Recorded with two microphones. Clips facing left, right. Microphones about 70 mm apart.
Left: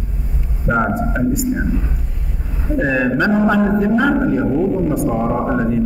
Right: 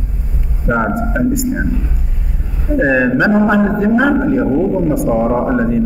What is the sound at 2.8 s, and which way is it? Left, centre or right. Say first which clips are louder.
A man's voice: right 4 dB; centre.